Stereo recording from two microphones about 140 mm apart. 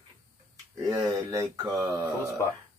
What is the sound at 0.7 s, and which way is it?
Speech, 25° right (ahead or behind).